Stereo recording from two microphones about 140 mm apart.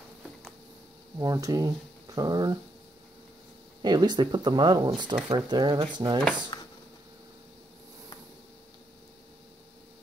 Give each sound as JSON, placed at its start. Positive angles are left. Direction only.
{"t": 1.1, "sound": "speech", "side_deg": -25}
{"t": 3.8, "sound": "speech", "side_deg": -30}
{"t": 6.5, "sound": "a sound", "side_deg": 30}